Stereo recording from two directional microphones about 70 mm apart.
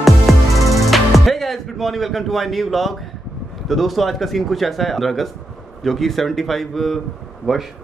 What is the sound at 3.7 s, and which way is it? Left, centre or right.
Speech, centre.